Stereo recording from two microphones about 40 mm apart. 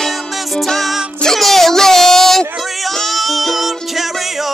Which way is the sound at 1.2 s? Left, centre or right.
Centre.